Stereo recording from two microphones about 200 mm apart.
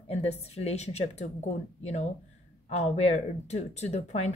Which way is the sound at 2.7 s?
35° left (ahead or behind).